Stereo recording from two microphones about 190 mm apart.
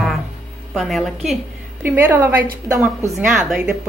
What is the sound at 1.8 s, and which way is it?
A woman's voice, 10° right (ahead or behind).